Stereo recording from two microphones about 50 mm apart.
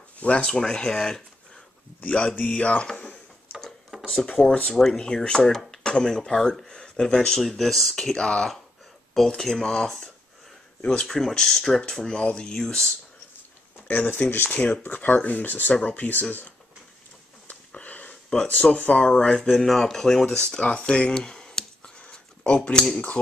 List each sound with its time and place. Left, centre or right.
0.2 s speech: left
0.5 s speech: centre
2.0 s speech: left
3.9 s a sound: centre
4.4 s speech: left
4.7 s speech: centre
8.0 s speech: centre
10.8 s speech: left
11.1 s speech: centre
13.8 s speech: left
17.5 s sniff: left
18.6 s speech: left
19.5 s speech: centre